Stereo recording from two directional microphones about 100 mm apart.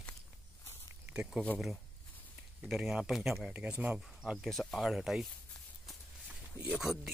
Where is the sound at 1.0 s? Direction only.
10° right (ahead or behind).